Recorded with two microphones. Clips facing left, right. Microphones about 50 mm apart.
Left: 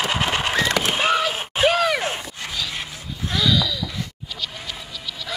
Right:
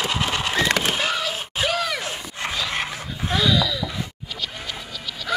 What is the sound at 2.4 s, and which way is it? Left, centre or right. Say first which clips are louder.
Dog: right 5 dB; right.